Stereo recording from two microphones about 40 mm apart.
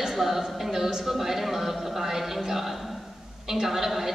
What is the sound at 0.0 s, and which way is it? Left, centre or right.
A woman's voice, centre.